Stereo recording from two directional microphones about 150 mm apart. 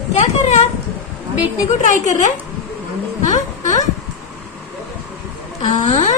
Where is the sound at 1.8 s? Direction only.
55° left (ahead or behind).